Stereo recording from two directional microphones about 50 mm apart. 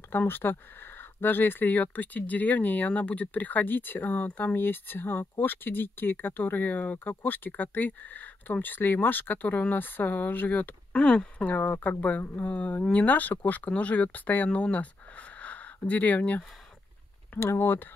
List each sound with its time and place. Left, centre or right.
0.3 s speech: left
10.9 s speech: centre
11.4 s speech: left
17.4 s speech: left